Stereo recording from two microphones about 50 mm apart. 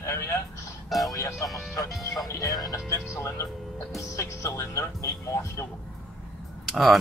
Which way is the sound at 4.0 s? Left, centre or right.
Left.